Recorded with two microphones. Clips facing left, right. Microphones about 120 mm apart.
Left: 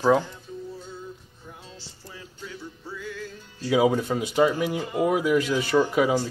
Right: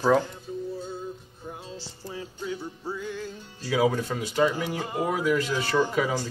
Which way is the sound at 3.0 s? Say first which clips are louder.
Left 1 dB; 25° right (ahead or behind).